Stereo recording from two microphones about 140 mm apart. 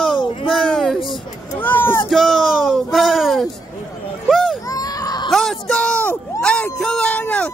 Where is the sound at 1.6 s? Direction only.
15° left (ahead or behind).